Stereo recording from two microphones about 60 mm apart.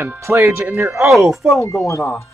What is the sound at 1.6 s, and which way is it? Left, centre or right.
Speech, left.